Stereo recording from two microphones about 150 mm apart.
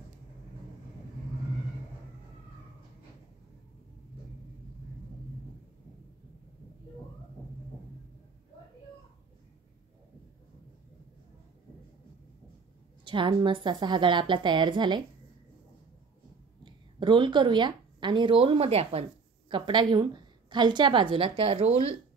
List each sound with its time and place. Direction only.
13.0 s a woman's voice: 35° right (ahead or behind)
16.6 s speech: 35° right (ahead or behind)
19.5 s a woman's voice: 30° right (ahead or behind)